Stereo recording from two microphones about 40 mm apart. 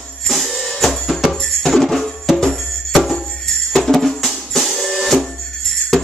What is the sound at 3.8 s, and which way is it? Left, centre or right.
Music, centre.